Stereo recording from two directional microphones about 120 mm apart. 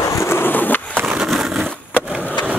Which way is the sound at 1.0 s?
5° right (ahead or behind).